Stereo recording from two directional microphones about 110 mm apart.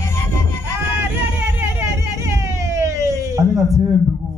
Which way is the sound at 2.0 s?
25° right (ahead or behind).